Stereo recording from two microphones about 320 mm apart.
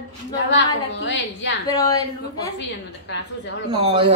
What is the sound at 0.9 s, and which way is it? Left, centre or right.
Speech, left.